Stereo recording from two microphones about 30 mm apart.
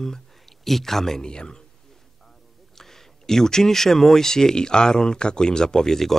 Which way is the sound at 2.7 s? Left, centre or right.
Centre.